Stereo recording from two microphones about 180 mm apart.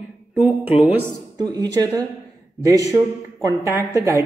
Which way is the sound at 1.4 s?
20° right (ahead or behind).